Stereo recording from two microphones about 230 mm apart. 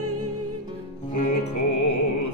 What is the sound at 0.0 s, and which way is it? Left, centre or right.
Music, right.